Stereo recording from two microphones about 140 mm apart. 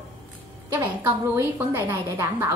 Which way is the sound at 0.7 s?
15° right (ahead or behind).